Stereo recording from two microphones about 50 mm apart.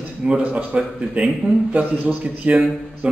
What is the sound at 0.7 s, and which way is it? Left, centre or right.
A man's voice, centre.